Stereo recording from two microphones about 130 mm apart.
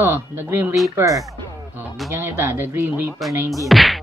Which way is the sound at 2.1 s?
15° right (ahead or behind).